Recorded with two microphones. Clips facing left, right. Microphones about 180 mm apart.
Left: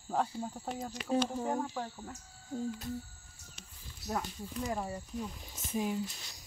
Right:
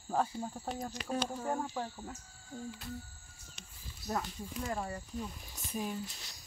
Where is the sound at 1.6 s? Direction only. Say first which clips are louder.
Left 1 dB; 5° right (ahead or behind).